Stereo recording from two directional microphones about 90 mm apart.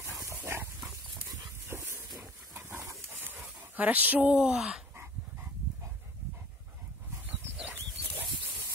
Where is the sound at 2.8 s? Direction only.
35° right (ahead or behind).